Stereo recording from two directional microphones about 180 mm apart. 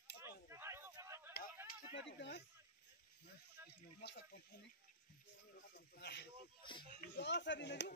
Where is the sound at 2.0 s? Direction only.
80° left.